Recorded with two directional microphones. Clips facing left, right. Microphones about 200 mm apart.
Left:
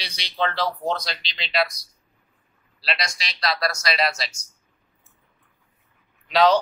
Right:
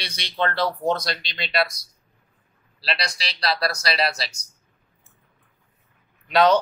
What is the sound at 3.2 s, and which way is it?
Speech, 35° right (ahead or behind).